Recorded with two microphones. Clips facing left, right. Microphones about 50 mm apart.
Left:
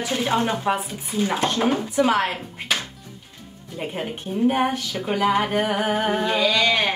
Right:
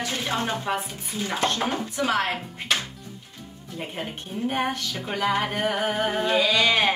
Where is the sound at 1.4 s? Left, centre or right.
Centre.